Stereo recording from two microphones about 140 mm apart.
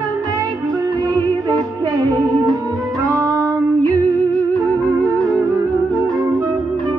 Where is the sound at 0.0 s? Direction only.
25° right (ahead or behind).